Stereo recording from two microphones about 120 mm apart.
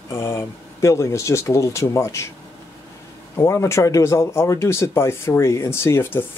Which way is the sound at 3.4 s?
25° left (ahead or behind).